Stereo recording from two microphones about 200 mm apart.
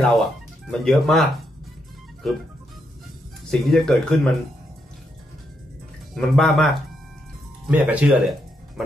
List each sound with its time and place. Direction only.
0.1 s speech: centre (ahead or behind)
3.4 s speech: centre (ahead or behind)
6.1 s speech: centre (ahead or behind)